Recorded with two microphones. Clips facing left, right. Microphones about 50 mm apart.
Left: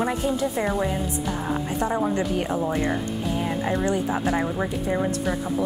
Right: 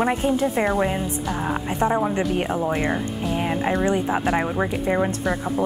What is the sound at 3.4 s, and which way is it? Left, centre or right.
A woman's voice, right.